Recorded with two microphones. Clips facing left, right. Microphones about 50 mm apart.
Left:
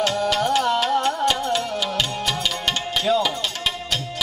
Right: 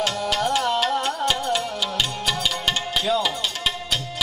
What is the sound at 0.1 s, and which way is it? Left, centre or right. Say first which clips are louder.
Music: left 2 dB; centre.